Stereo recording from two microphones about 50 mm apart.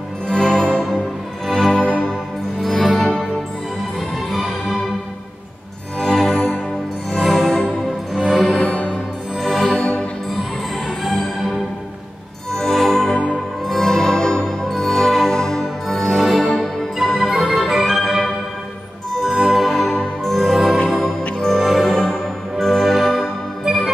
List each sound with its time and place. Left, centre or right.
0.3 s music: centre
4.3 s music: centre
5.9 s music: centre
8.5 s music: left
9.4 s music: centre
11.1 s music: centre